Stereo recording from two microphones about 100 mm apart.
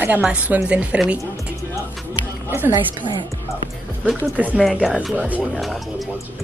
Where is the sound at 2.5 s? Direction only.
30° right (ahead or behind).